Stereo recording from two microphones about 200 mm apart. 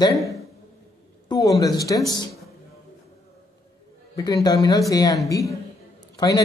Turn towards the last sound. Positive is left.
turn(degrees=20)  # may be behind; listen again after turning